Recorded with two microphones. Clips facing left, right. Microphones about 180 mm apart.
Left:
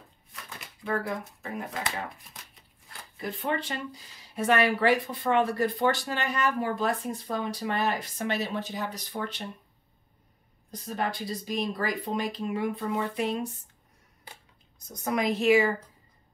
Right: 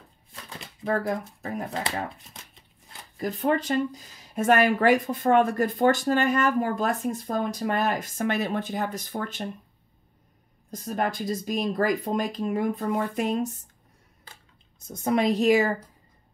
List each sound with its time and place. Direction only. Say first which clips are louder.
0.3 s speech: right 3 dB; 30° right (ahead or behind)
3.2 s speech: right 6 dB; 40° right (ahead or behind)
10.7 s speech: right 4 dB; 45° right (ahead or behind)
14.8 s a woman's voice: right 5 dB; 25° right (ahead or behind)